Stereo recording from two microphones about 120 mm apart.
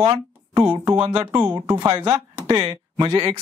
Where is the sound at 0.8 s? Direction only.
30° right (ahead or behind).